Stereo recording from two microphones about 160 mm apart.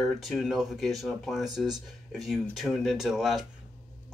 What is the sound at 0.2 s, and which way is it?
Speech, centre (ahead or behind).